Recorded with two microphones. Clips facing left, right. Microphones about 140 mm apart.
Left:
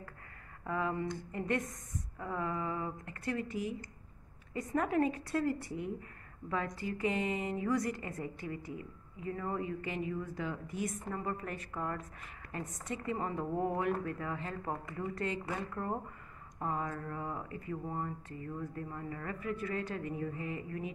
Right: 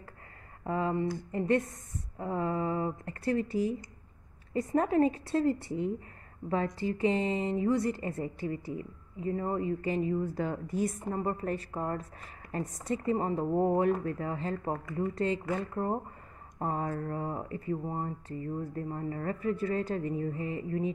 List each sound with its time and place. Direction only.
0.7 s a woman's voice: 30° right (ahead or behind)
16.5 s a woman's voice: 40° right (ahead or behind)